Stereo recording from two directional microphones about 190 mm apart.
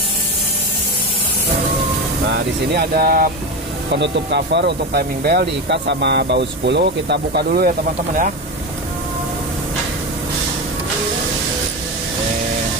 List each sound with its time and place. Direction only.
2.3 s speech: 60° right (ahead or behind)
4.0 s speech: 65° right (ahead or behind)